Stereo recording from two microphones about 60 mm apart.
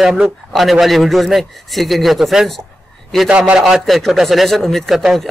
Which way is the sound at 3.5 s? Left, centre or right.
Centre.